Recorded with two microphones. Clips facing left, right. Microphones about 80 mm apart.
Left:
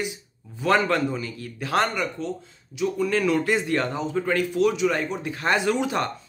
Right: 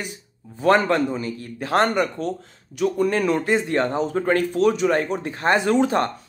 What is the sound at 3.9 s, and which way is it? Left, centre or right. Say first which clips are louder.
Speech: right 4 dB; right.